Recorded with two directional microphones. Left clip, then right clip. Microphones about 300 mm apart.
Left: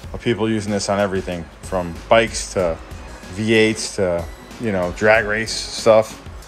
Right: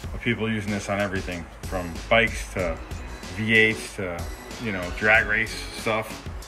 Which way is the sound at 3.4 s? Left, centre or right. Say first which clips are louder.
Left 3 dB; left.